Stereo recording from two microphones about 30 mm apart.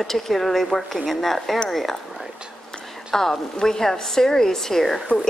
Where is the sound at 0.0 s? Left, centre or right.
Centre.